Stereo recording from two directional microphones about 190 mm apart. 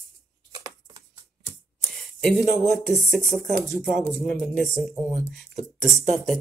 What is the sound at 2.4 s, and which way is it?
Speech, centre (ahead or behind).